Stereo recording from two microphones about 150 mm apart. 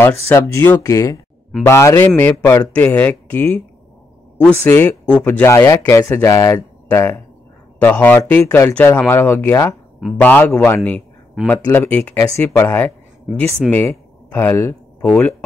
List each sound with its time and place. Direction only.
0.0 s a man's voice: 15° left (ahead or behind)